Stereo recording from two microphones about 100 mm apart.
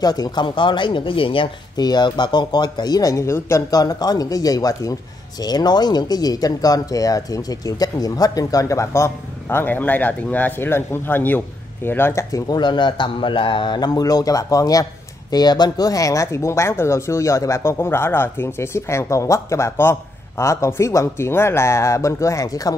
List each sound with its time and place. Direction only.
0.0 s speech: 40° left (ahead or behind)